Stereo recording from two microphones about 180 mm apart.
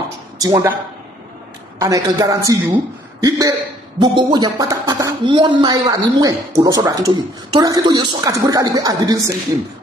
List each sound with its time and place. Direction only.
0.4 s speech: 20° right (ahead or behind)
1.8 s speech: 20° right (ahead or behind)